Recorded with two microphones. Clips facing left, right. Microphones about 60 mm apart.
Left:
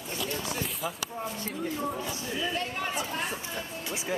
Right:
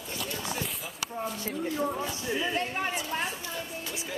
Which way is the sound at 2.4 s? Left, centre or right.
Right.